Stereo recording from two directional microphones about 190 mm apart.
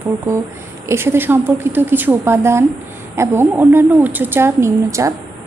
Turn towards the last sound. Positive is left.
turn(degrees=-15)  # may be behind; listen again after turning